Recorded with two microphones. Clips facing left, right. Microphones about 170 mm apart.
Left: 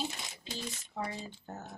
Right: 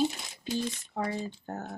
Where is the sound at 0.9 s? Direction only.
55° right (ahead or behind).